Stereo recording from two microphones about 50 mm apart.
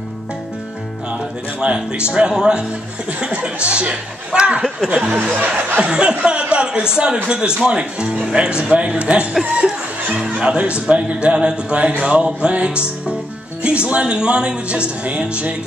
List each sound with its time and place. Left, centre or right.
1.6 s speech: right
6.5 s a sound: centre
7.2 s speech: centre